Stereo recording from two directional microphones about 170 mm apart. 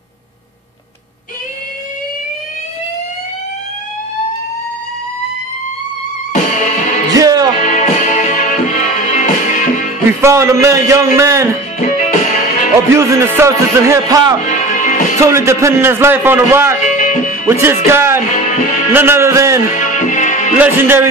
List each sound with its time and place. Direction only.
6.3 s music: 45° left (ahead or behind)
7.2 s music: 20° right (ahead or behind)
7.6 s music: 45° left (ahead or behind)
10.2 s a man's voice: 15° right (ahead or behind)
11.9 s music: 50° left (ahead or behind)
12.9 s a man's voice: 15° right (ahead or behind)
14.5 s music: 45° left (ahead or behind)
15.1 s a man's voice: 15° right (ahead or behind)
16.8 s music: 50° left (ahead or behind)
17.5 s a man's voice: 15° right (ahead or behind)
19.7 s music: 50° left (ahead or behind)
20.5 s a man's voice: 10° right (ahead or behind)